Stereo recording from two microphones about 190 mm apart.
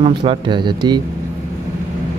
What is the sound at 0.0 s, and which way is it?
Speech, 25° right (ahead or behind).